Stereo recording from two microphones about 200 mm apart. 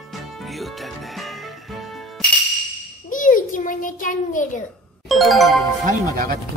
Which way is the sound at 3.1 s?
40° left (ahead or behind).